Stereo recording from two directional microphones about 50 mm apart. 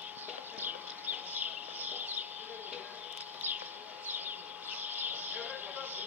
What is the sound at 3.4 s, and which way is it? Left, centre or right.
Bird, right.